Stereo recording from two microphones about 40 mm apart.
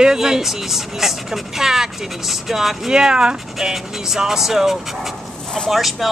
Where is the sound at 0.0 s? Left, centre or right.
Centre.